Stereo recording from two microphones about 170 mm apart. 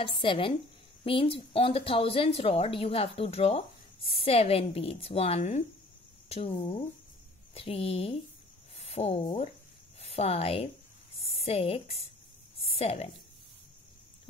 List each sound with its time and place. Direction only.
0.0 s a woman's voice: 30° left (ahead or behind)